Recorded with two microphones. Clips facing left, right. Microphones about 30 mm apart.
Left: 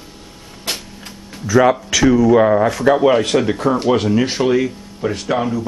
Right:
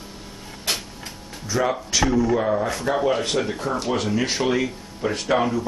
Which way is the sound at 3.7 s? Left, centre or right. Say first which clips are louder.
Left 7 dB; left.